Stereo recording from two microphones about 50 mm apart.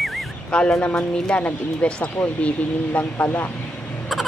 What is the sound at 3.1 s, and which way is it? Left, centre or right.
Speech, left.